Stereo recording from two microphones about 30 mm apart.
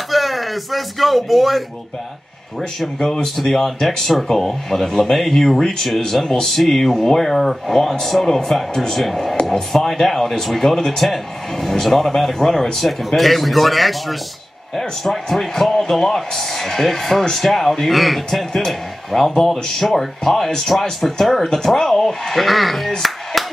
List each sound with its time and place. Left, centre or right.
0.1 s speech: centre
3.0 s speech: left
3.4 s speech: centre
22.3 s speech: centre